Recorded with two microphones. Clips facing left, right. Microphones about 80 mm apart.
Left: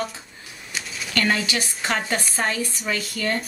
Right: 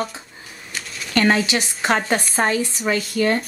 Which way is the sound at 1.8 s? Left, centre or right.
Right.